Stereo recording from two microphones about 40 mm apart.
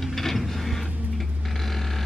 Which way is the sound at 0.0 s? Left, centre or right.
Centre.